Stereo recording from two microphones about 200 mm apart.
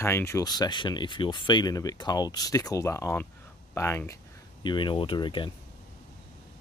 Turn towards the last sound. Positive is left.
turn(degrees=25)  # may be behind; listen again after turning